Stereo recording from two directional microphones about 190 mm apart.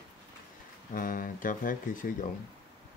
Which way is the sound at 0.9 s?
45° left (ahead or behind).